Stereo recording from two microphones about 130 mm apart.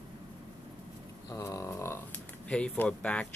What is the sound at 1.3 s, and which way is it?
Speech, 25° left (ahead or behind).